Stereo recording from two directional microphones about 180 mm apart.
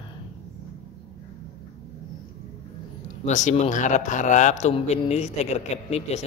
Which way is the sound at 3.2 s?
40° left (ahead or behind).